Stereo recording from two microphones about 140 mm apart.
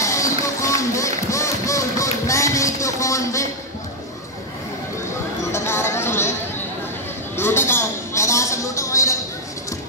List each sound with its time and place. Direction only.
0.0 s run: 20° left (ahead or behind)
5.5 s music: 20° left (ahead or behind)
7.3 s a sound: 15° left (ahead or behind)